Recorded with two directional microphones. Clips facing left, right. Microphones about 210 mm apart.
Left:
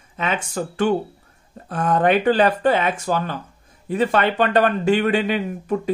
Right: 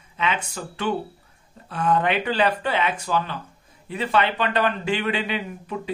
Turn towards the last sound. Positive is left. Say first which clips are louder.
# left 7 dB
turn(degrees=45)  # may be behind; listen again after turning